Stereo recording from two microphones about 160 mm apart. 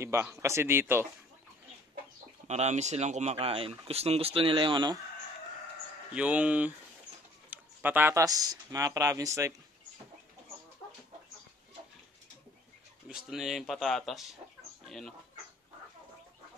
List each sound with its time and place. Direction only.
0.0 s a man's voice: 15° right (ahead or behind)
2.4 s speech: 45° right (ahead or behind); by 5.0 s 25° right (ahead or behind)
6.1 s a man's voice: 5° right (ahead or behind)
13.1 s speech: centre (ahead or behind)